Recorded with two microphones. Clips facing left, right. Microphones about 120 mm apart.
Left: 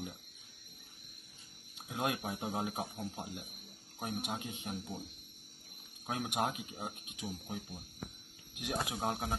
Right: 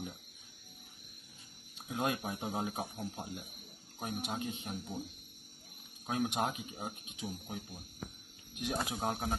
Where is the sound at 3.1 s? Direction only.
15° left (ahead or behind).